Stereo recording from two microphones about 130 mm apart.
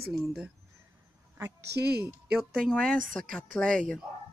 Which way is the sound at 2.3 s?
5° left (ahead or behind).